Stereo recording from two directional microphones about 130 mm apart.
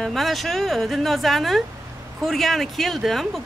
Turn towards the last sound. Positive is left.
turn(degrees=0)  # may be behind; listen again after turning